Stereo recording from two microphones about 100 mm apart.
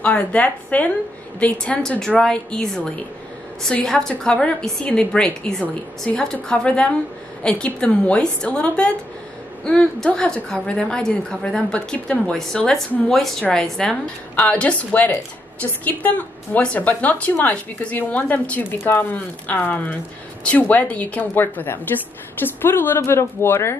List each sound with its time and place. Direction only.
0.0 s a woman's voice: 15° left (ahead or behind)